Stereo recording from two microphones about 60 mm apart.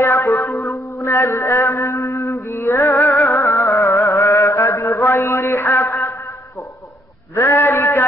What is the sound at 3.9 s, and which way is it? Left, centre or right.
Mantra, left.